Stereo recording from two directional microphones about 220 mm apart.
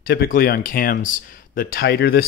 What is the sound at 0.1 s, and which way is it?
Speech, 40° left (ahead or behind).